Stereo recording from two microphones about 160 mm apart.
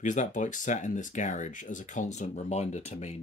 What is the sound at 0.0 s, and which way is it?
Speech, 50° left (ahead or behind).